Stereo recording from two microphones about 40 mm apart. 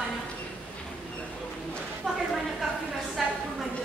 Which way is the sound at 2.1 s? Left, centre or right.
Centre.